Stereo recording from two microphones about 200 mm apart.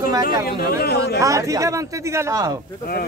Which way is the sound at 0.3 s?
50° left (ahead or behind).